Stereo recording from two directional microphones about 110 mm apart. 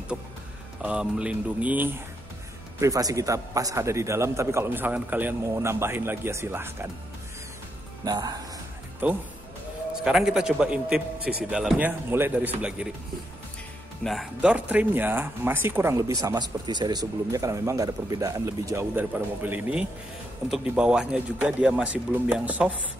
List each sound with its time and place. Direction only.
0.8 s speech: 10° right (ahead or behind)
2.8 s speech: 30° right (ahead or behind)
8.0 s a man's voice: 35° right (ahead or behind)
9.0 s a man's voice: 15° right (ahead or behind)
11.8 s speech: 15° right (ahead or behind)
14.0 s a man's voice: centre (ahead or behind)
14.4 s speech: 15° right (ahead or behind); by 18.9 s 30° right (ahead or behind)
18.9 s speech: 15° right (ahead or behind)